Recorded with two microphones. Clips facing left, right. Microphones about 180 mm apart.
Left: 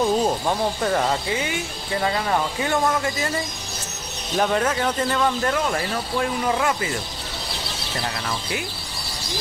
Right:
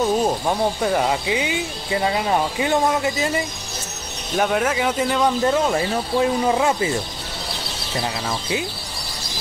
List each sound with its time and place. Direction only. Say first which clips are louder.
0.0 s speech: right 1 dB; 5° right (ahead or behind)
4.4 s speech: right 1 dB; 5° right (ahead or behind); by 6.9 s 25° right (ahead or behind)
8.0 s speech: right 3 dB; 20° right (ahead or behind)